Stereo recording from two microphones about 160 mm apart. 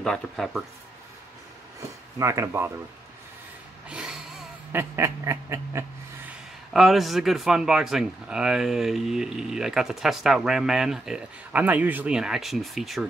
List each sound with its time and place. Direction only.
0.0 s speech: 5° left (ahead or behind)
2.1 s speech: 20° right (ahead or behind)
3.9 s a sound: 5° right (ahead or behind)
4.9 s speech: 15° right (ahead or behind)
6.7 s speech: centre (ahead or behind)